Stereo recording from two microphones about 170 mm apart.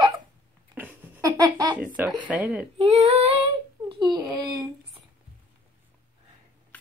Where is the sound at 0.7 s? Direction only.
10° right (ahead or behind).